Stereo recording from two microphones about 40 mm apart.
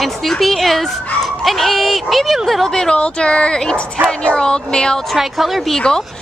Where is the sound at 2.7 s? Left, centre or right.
Left.